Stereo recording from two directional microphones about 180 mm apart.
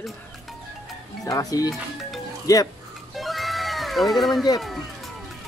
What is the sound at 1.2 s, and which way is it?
Speech, 20° left (ahead or behind).